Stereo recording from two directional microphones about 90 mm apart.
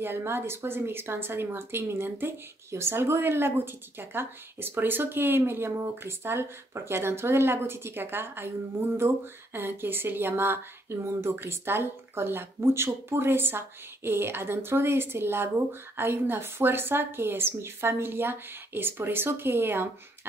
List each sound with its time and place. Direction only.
0.0 s a woman's voice: 25° right (ahead or behind)